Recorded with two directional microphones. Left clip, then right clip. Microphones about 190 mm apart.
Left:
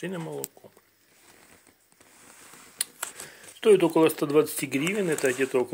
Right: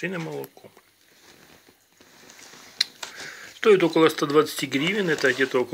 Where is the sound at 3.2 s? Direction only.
15° left (ahead or behind).